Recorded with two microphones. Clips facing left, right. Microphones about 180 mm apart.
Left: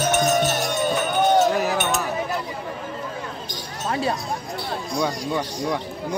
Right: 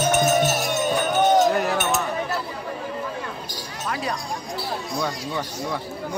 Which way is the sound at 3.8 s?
30° left (ahead or behind).